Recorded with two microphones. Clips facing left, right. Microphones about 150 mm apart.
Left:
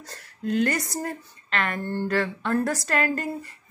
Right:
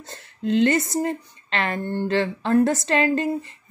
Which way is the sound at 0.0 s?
25° right (ahead or behind).